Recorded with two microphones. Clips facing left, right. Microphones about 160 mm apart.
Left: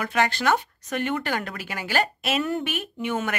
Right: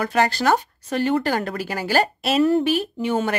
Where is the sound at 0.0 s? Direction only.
35° right (ahead or behind).